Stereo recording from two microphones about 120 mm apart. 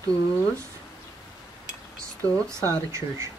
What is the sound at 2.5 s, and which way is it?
Speech, 25° right (ahead or behind).